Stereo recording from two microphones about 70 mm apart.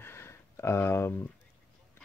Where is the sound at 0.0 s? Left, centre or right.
Left.